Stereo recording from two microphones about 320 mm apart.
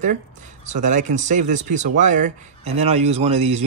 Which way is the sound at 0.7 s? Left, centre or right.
Right.